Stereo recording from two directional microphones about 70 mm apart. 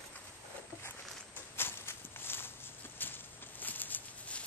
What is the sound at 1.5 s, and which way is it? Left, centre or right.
Walk, left.